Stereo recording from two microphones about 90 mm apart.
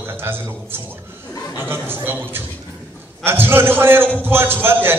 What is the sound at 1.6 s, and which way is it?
A man's voice, 25° right (ahead or behind).